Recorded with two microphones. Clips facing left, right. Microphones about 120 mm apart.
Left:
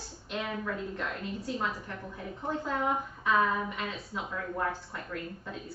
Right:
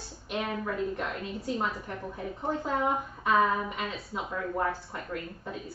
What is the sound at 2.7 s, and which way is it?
A woman's voice, 20° right (ahead or behind).